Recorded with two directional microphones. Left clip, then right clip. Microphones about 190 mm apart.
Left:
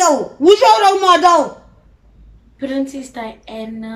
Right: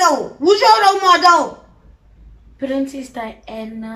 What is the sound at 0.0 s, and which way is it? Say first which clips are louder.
A woman's voice: left 2 dB; 15° left (ahead or behind).